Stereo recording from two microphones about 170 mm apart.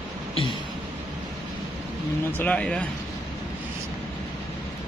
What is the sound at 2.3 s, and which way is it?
Speech, 10° left (ahead or behind).